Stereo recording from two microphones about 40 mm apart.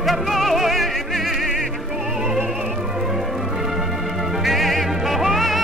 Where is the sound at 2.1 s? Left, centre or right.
Centre.